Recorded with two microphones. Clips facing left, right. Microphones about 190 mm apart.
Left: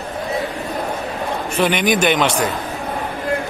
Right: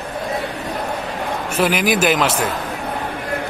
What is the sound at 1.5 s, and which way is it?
Speech, 5° right (ahead or behind).